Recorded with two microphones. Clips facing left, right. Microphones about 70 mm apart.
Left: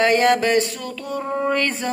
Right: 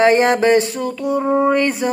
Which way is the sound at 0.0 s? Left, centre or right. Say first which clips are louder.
Right 4 dB; right.